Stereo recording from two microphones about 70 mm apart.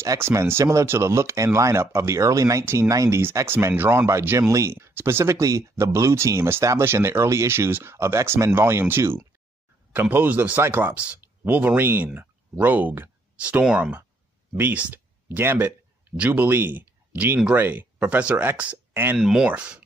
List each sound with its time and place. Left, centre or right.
0.0 s speech: right
2.6 s speech: right
2.9 s speech: right
3.4 s speech: right
4.4 s speech: right
19.1 s speech: centre
19.4 s speech: centre